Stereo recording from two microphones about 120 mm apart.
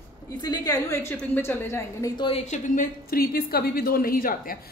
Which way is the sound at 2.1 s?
45° left (ahead or behind).